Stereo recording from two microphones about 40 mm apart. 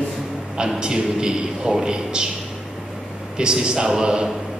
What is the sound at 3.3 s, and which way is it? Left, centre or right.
Speech, centre.